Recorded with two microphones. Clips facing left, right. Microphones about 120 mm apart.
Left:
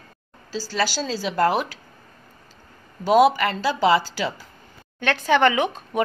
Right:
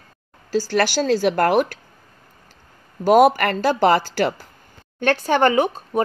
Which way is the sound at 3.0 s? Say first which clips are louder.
Right 3 dB; 50° right (ahead or behind).